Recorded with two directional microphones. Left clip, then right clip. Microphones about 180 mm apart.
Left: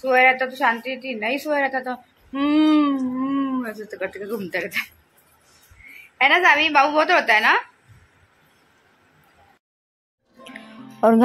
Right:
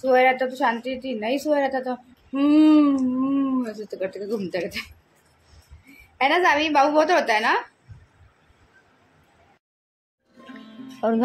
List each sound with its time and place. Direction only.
0.0 s a woman's voice: 10° right (ahead or behind)
6.1 s a woman's voice: 10° right (ahead or behind)
11.0 s speech: 25° left (ahead or behind)